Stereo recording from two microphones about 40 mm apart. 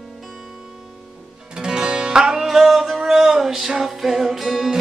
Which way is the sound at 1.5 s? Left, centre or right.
Centre.